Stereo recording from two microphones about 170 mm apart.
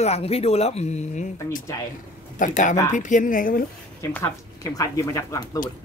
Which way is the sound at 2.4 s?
50° left (ahead or behind).